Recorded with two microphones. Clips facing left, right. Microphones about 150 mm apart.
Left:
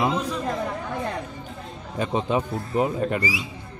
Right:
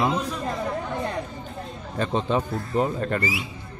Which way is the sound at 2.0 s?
10° left (ahead or behind).